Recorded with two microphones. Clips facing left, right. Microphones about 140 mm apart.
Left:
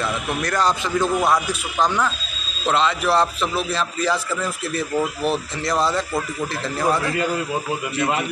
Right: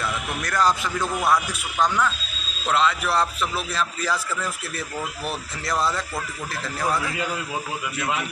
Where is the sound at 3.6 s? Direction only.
5° right (ahead or behind).